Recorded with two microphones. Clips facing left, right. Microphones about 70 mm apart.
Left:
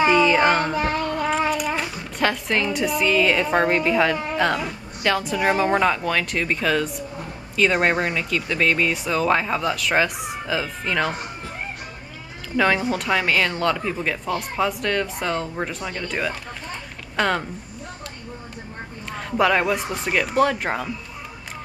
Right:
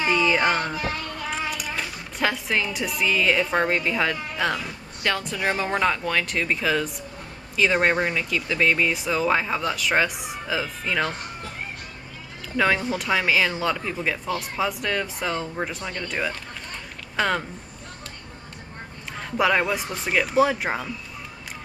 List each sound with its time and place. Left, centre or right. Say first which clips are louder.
0.1 s music: left 4 dB; centre
0.7 s child singing: left 7 dB; left
1.8 s speech: left 3 dB; centre
12.5 s speech: left 2 dB; centre
19.1 s speech: left 2 dB; centre